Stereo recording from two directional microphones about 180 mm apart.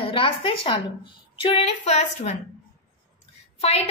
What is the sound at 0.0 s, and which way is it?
A woman's voice, 30° left (ahead or behind).